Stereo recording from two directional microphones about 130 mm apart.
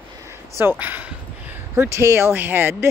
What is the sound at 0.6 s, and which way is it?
Speech, 15° right (ahead or behind).